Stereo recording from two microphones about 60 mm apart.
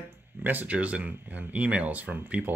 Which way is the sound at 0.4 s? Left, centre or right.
Right.